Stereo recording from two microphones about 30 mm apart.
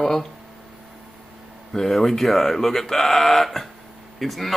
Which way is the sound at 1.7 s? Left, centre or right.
Centre.